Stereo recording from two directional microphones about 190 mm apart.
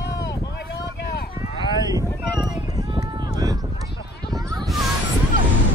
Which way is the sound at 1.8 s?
20° right (ahead or behind).